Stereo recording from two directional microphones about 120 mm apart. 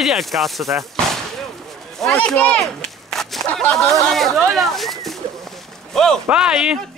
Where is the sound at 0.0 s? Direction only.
Centre (ahead or behind).